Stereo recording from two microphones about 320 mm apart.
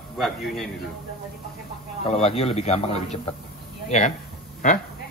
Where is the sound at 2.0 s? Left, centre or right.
Centre.